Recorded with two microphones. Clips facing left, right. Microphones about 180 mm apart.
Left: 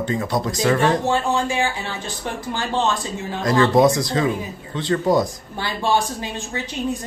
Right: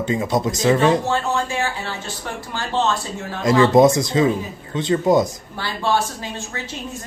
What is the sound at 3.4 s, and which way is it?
Speech, 20° right (ahead or behind).